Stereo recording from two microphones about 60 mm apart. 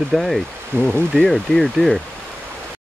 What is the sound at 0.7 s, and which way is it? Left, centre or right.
Speech, right.